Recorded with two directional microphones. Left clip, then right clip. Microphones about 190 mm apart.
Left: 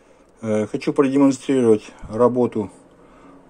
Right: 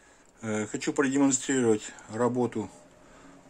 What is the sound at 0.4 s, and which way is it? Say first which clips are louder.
Speech: left 10 dB; 10° left (ahead or behind).